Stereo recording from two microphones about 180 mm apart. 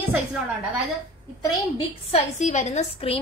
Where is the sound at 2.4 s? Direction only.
40° left (ahead or behind).